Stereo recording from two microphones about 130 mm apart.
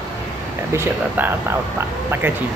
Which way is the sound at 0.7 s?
20° right (ahead or behind).